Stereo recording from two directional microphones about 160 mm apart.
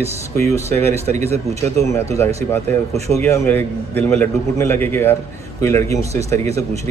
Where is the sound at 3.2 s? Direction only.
15° left (ahead or behind).